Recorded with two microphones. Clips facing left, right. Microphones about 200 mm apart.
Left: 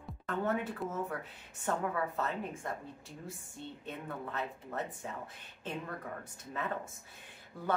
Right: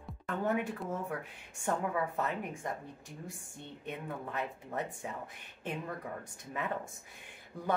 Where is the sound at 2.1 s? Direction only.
15° right (ahead or behind).